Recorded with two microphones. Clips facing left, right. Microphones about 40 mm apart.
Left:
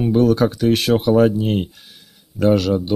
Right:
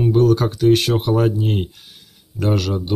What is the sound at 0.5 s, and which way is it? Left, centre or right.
Speech, left.